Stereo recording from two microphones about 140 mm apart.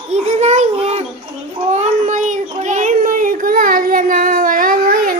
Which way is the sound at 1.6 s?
55° right (ahead or behind).